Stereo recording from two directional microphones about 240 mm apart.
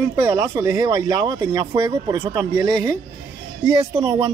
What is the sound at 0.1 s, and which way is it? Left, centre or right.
Speech, centre.